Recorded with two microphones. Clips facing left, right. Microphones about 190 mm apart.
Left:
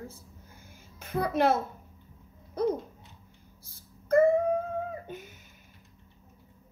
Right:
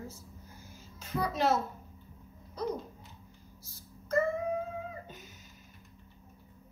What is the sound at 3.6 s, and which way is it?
Dog, 55° left (ahead or behind).